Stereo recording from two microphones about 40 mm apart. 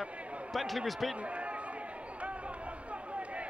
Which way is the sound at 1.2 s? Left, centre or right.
Right.